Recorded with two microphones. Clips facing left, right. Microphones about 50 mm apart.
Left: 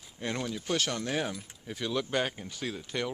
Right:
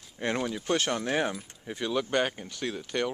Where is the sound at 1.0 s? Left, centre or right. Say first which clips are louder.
Right 4 dB; centre.